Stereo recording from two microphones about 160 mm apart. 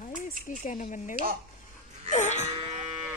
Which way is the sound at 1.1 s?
65° right (ahead or behind).